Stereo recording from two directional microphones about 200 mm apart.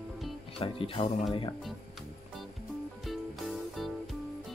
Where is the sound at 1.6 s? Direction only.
Centre (ahead or behind).